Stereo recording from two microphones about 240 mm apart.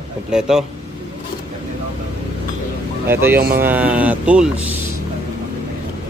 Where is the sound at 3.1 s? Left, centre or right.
Centre.